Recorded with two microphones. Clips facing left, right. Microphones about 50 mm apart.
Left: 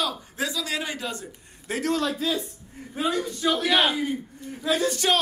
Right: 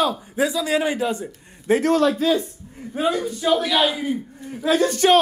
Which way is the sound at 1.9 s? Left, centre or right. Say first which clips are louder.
Right 8 dB; right.